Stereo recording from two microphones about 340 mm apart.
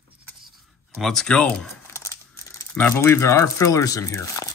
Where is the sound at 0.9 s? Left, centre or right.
Centre.